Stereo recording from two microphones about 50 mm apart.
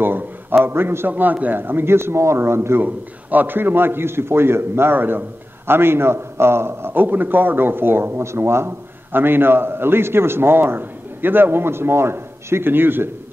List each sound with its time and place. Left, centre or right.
0.0 s a sound: right
0.7 s a man's voice: right
2.8 s a man's voice: right
9.1 s a man's voice: right